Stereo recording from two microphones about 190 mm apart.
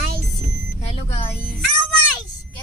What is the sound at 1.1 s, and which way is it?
Speech, 30° left (ahead or behind).